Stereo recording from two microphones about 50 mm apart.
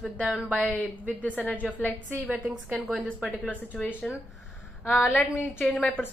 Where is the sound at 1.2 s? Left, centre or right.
Left.